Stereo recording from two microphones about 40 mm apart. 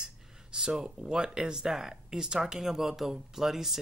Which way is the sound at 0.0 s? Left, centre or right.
Centre.